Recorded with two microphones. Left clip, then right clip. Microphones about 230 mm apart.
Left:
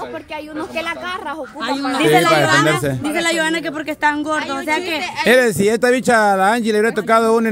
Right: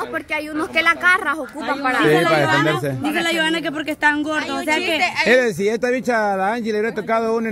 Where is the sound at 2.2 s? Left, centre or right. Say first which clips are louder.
Left 3 dB; left.